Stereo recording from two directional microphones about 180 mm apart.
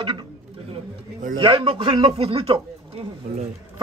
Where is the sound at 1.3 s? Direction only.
30° right (ahead or behind).